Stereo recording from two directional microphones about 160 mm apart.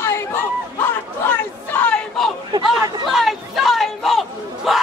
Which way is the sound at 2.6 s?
Centre (ahead or behind).